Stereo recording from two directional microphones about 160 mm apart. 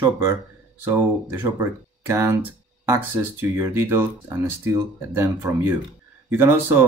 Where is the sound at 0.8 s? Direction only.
10° right (ahead or behind).